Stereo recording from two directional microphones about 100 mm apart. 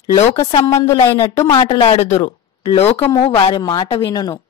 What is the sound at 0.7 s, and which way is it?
Speech, 30° left (ahead or behind).